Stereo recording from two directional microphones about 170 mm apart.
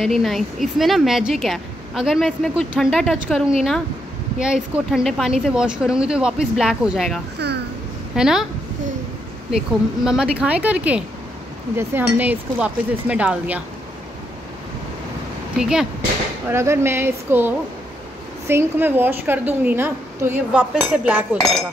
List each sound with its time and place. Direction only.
0.0 s a woman's voice: centre (ahead or behind)
7.3 s a sound: 75° right (ahead or behind)
8.2 s a woman's voice: 5° right (ahead or behind)
10.0 s a woman's voice: 5° right (ahead or behind)
15.6 s a woman's voice: 5° right (ahead or behind)
16.4 s a woman's voice: 15° right (ahead or behind)